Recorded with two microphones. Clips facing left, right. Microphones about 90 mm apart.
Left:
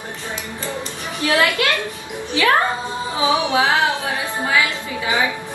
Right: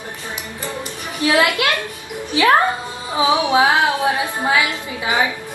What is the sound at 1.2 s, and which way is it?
Speech, 20° right (ahead or behind).